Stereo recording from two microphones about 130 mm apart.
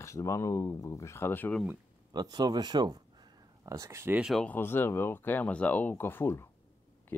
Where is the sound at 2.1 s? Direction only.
30° right (ahead or behind).